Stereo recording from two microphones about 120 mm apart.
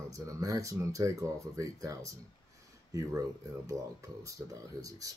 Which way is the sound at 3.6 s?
30° right (ahead or behind).